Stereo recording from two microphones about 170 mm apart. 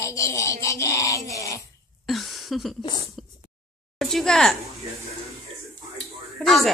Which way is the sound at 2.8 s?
25° left (ahead or behind).